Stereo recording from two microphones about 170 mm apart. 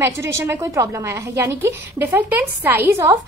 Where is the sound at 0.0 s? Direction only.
15° right (ahead or behind).